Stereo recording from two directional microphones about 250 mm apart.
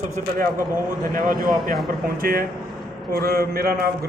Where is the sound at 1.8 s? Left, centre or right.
Right.